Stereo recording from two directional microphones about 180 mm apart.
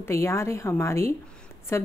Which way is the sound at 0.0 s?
15° left (ahead or behind).